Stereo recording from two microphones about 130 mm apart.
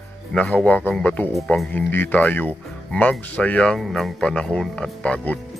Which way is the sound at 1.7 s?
15° left (ahead or behind).